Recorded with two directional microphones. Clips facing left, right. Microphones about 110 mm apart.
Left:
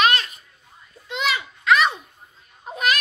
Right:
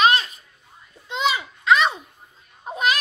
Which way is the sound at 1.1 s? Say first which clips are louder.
Right 2 dB; 30° right (ahead or behind).